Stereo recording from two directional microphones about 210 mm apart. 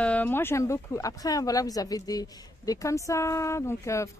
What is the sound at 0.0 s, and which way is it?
Speech, 5° left (ahead or behind).